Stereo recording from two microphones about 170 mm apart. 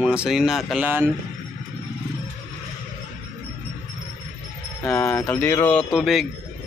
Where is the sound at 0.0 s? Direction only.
5° right (ahead or behind).